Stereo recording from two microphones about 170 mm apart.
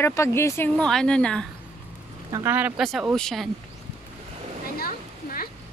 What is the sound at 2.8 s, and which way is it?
Speech, centre (ahead or behind).